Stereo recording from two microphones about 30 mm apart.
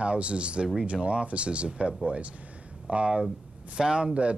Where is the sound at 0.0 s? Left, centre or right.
Right.